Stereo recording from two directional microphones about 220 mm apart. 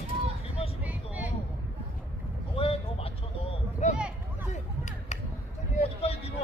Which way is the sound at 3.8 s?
30° left (ahead or behind).